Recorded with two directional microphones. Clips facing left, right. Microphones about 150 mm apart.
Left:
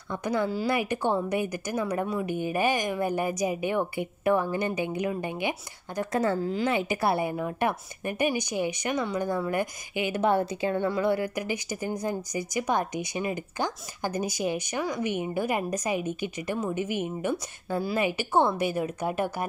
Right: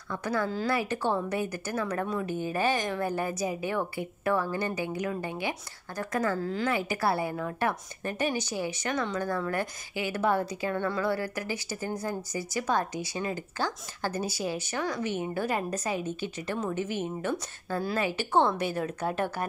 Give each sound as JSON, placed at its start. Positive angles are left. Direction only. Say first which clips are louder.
{"t": 0.1, "sound": "a woman's voice", "louder": "left 2 dB", "side_deg": 20}